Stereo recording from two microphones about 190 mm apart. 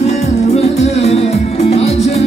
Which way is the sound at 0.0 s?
35° left (ahead or behind).